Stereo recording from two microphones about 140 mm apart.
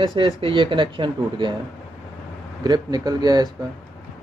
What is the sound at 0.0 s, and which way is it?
Speech, 30° right (ahead or behind).